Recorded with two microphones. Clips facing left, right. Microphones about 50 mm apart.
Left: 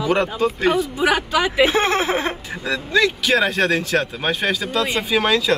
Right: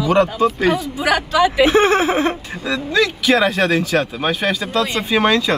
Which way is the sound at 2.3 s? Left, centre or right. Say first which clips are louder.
Right 2 dB; centre.